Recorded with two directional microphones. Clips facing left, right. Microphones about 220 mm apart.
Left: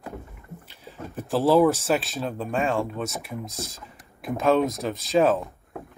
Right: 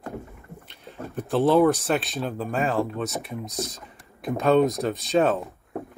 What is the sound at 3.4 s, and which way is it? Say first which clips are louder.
Speech: right 4 dB; 25° left (ahead or behind).